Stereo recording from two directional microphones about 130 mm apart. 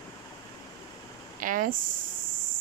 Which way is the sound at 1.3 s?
90° right.